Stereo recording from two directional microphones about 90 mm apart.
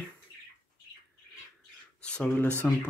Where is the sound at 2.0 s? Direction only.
10° left (ahead or behind).